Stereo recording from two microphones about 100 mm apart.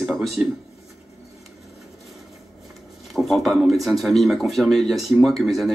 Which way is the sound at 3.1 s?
Centre (ahead or behind).